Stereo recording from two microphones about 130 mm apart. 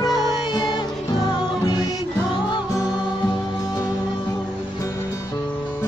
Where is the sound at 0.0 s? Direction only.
30° left (ahead or behind).